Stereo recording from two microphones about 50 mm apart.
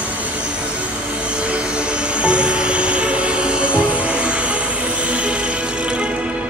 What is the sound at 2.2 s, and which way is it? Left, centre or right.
Music, right.